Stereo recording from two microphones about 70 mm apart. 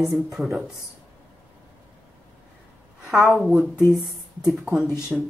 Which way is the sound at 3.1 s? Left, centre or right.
Centre.